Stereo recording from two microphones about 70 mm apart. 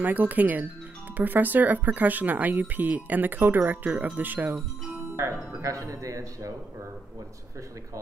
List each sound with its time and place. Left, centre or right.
0.0 s speech: right
5.2 s speech: right